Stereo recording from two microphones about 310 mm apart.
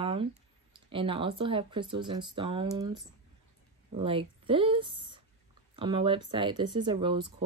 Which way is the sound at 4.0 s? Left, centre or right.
Centre.